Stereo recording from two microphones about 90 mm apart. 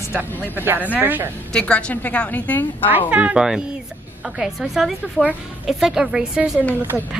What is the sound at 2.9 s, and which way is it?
A woman's voice, 15° right (ahead or behind).